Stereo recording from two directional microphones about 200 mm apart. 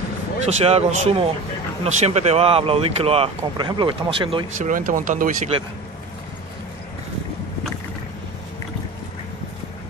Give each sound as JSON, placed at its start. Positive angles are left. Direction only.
{"t": 0.5, "sound": "speech", "side_deg": -30}
{"t": 4.6, "sound": "speech", "side_deg": -40}